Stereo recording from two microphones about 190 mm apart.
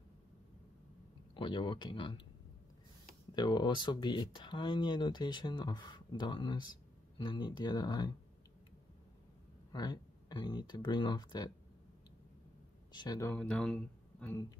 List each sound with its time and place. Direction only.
1.3 s speech: 25° left (ahead or behind)
3.3 s speech: 25° left (ahead or behind)
9.7 s speech: 20° left (ahead or behind)
12.9 s speech: 20° left (ahead or behind)
13.4 s speech: 5° left (ahead or behind)